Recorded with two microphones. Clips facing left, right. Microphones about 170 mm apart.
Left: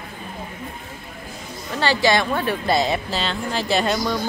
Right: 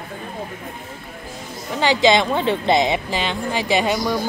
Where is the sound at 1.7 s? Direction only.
20° right (ahead or behind).